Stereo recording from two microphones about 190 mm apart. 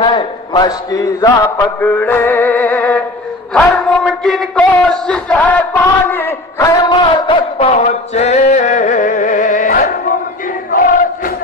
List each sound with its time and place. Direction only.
0.0 s mantra: 25° left (ahead or behind)
3.5 s speech: 5° left (ahead or behind)
6.9 s a sound: 25° left (ahead or behind); by 9.9 s 45° left (ahead or behind)
10.7 s crowd: 45° left (ahead or behind)